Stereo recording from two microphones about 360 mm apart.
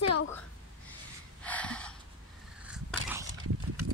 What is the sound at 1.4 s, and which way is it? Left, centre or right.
Gasp, centre.